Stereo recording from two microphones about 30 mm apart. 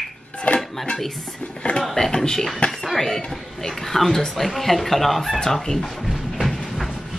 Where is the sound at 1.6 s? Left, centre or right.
Left.